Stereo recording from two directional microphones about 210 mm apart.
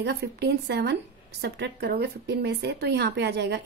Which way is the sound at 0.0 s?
50° right (ahead or behind).